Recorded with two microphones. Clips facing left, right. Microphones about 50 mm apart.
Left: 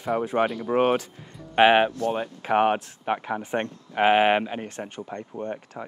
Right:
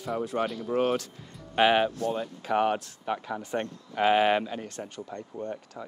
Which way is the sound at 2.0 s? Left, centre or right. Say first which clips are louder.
Left 3 dB; left.